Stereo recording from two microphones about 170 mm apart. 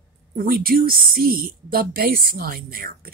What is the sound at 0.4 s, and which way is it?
Speech, 60° right (ahead or behind).